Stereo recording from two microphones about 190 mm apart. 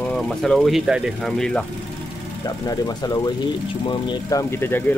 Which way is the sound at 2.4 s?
20° left (ahead or behind).